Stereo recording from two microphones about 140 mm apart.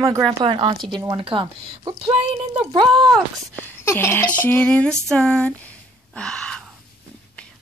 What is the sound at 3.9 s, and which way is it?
Speech, 20° left (ahead or behind).